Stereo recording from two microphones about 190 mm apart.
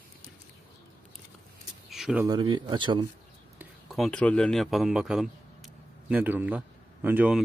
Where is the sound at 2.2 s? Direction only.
25° right (ahead or behind).